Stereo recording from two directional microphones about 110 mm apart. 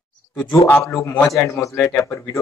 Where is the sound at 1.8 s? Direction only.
20° left (ahead or behind).